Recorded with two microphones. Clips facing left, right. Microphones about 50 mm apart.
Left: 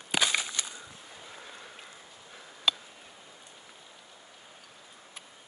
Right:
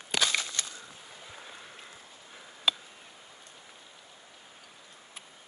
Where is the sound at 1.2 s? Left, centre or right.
Centre.